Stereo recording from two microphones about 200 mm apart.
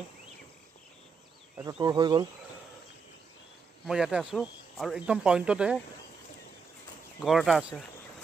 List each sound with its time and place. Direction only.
1.6 s speech: 20° right (ahead or behind)
3.8 s speech: 5° right (ahead or behind)
7.2 s speech: centre (ahead or behind)